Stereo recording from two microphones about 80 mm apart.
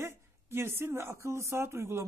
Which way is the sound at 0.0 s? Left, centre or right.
Right.